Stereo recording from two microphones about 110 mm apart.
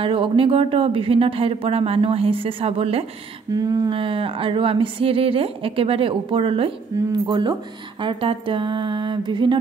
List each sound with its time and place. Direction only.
0.0 s speech: 55° right (ahead or behind)
3.5 s a sound: 35° right (ahead or behind)
3.9 s speech: 55° right (ahead or behind)